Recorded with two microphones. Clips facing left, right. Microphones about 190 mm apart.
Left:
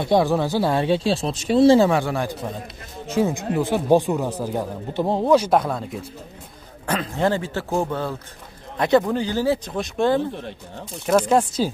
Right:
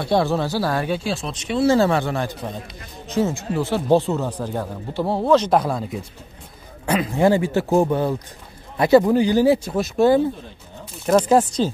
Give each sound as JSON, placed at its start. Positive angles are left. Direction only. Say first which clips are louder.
{"t": 0.0, "sound": "speech", "louder": "left 1 dB", "side_deg": 15}
{"t": 1.8, "sound": "speech", "louder": "left 1 dB", "side_deg": 10}
{"t": 5.5, "sound": "speech", "louder": "right 1 dB", "side_deg": 0}
{"t": 8.7, "sound": "a man's voice", "louder": "right 4 dB", "side_deg": -5}